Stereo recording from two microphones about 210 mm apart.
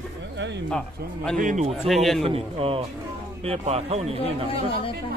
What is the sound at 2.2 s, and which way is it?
Speech, 25° right (ahead or behind).